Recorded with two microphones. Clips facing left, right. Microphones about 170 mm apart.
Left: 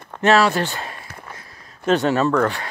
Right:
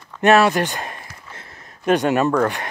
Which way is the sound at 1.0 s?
55° left (ahead or behind).